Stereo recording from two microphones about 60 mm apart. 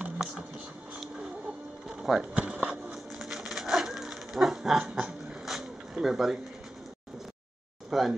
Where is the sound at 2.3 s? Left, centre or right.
Centre.